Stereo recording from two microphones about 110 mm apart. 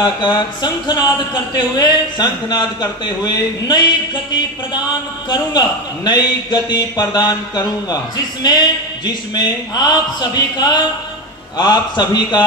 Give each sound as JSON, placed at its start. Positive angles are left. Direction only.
{"t": 0.0, "sound": "a man's voice", "side_deg": 40}
{"t": 5.3, "sound": "a man's voice", "side_deg": 40}